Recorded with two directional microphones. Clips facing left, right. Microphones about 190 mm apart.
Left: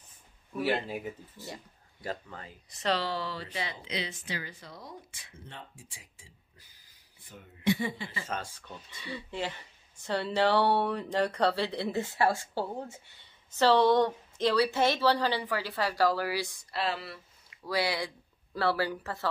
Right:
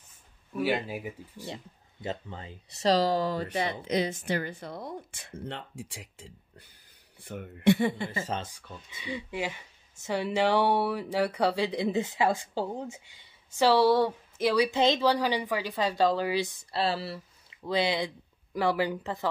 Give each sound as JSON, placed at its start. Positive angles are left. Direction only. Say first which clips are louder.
{"t": 0.6, "sound": "speech", "louder": "right 1 dB", "side_deg": -5}
{"t": 2.8, "sound": "speech", "louder": "right 7 dB", "side_deg": -40}
{"t": 8.3, "sound": "speech", "louder": "right 2 dB", "side_deg": -20}